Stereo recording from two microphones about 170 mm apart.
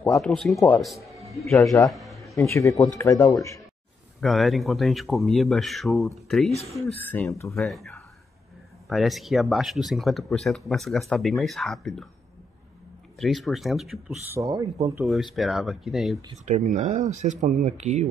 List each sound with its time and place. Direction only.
0.2 s speech: centre (ahead or behind)
1.5 s speech: 20° left (ahead or behind)
1.9 s a sound: centre (ahead or behind)
2.7 s speech: 10° left (ahead or behind)
4.2 s speech: centre (ahead or behind); by 7.5 s 15° left (ahead or behind)
7.5 s speech: centre (ahead or behind)
13.2 s speech: centre (ahead or behind)
14.3 s speech: 20° right (ahead or behind)
15.0 s speech: centre (ahead or behind)
16.4 s speech: 45° right (ahead or behind)